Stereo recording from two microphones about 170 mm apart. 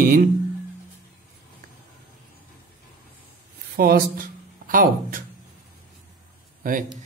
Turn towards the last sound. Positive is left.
turn(degrees=-50)  # may be behind; listen again after turning